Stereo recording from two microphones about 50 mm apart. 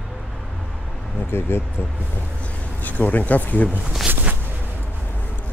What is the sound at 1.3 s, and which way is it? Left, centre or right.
Speech, left.